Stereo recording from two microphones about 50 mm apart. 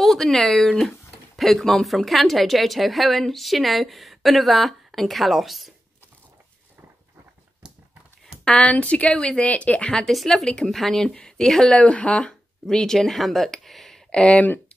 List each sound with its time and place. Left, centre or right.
0.0 s speech: centre
8.5 s speech: left
10.2 s speech: centre
11.7 s speech: left; by 14.0 s centre
14.1 s speech: centre